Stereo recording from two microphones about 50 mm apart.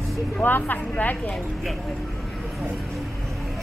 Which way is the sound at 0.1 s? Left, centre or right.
Centre.